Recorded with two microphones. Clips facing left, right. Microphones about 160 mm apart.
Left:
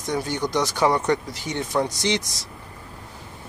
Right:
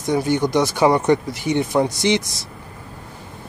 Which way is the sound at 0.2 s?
20° right (ahead or behind).